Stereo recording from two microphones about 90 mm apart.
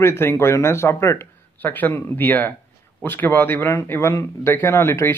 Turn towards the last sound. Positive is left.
turn(degrees=30)  # may be behind; listen again after turning